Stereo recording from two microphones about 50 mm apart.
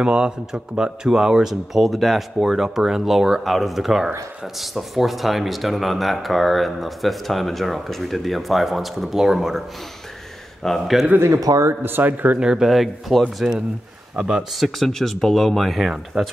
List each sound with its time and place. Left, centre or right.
0.0 s speech: centre
10.6 s speech: centre
11.8 s speech: right
12.4 s speech: centre
12.6 s speech: centre
14.6 s speech: centre